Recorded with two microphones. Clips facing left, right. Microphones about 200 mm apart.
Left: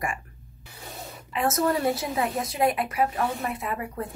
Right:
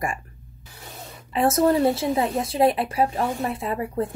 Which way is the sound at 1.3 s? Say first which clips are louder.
Right 5 dB; 30° right (ahead or behind).